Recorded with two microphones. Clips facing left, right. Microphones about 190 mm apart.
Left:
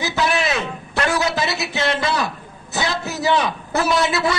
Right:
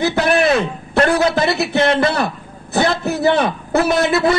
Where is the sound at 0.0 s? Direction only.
55° right (ahead or behind).